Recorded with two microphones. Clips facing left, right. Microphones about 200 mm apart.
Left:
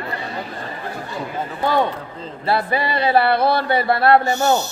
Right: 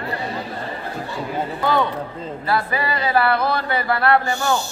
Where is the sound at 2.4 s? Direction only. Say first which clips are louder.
Left 2 dB; 30° left (ahead or behind).